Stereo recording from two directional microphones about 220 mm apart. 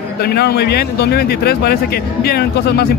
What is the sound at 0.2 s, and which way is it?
Speech, 45° left (ahead or behind).